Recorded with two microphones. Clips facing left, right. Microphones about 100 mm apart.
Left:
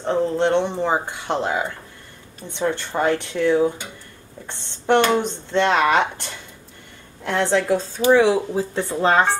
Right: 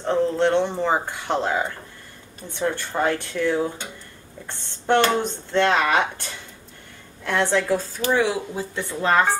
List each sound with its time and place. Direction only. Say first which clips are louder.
0.0 s speech: even; 15° left (ahead or behind)
7.2 s speech: left 2 dB; 20° left (ahead or behind)